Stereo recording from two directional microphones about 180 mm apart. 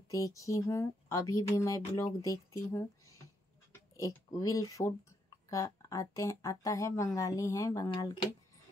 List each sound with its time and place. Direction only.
0.1 s speech: 20° left (ahead or behind)